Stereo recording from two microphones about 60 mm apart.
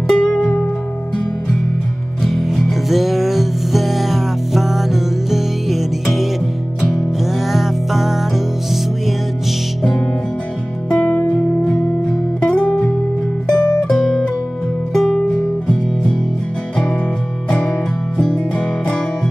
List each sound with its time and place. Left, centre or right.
0.1 s music: centre
2.2 s music: centre
10.9 s music: left
17.5 s music: centre